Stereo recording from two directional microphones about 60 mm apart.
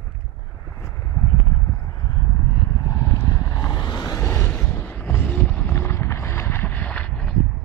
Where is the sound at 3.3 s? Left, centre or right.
Left.